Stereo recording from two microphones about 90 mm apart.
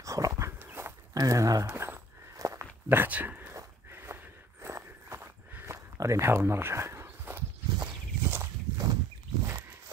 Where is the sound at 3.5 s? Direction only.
30° right (ahead or behind).